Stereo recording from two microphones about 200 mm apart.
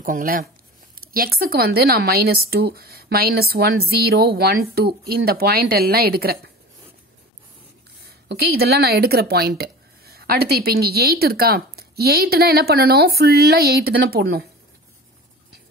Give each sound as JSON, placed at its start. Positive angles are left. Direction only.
{"t": 0.0, "sound": "a woman's voice", "side_deg": -45}
{"t": 8.3, "sound": "a woman's voice", "side_deg": -50}